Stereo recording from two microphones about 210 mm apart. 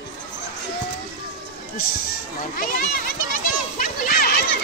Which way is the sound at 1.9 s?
40° left (ahead or behind).